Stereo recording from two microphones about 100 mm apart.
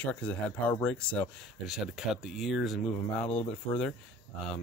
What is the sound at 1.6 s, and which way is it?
Speech, 5° right (ahead or behind).